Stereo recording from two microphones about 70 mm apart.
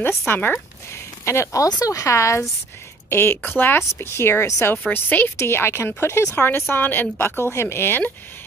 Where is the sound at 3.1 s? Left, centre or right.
Left.